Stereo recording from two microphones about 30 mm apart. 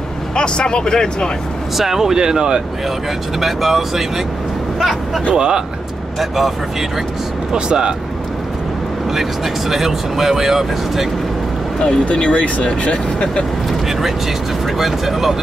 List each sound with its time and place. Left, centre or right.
0.4 s speech: left
1.8 s speech: centre
3.3 s speech: centre
5.3 s speech: right
6.1 s speech: centre
7.5 s speech: right
9.1 s speech: centre
12.1 s speech: left
14.8 s speech: centre